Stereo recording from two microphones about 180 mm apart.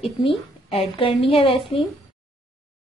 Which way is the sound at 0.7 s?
30° left (ahead or behind).